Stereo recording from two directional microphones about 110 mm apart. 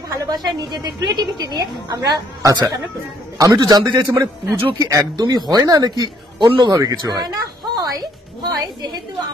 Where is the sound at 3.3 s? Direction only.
35° right (ahead or behind).